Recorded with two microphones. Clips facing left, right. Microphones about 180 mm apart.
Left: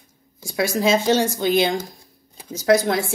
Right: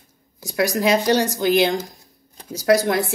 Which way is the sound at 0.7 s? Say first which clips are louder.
Left 1 dB; 15° right (ahead or behind).